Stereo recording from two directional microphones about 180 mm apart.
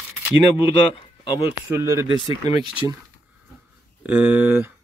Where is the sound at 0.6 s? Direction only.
30° left (ahead or behind).